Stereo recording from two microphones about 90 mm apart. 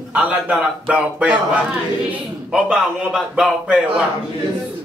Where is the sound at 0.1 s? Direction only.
10° right (ahead or behind).